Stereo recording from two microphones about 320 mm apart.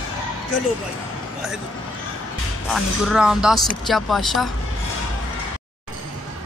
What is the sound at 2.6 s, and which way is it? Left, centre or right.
Speech, centre.